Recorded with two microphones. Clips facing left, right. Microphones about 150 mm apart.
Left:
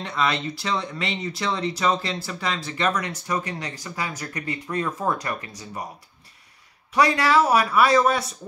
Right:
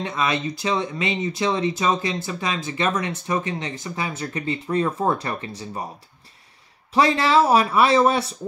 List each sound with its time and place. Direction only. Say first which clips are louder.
0.0 s speech: right 1 dB; 20° right (ahead or behind)
6.9 s speech: right 1 dB; 30° right (ahead or behind)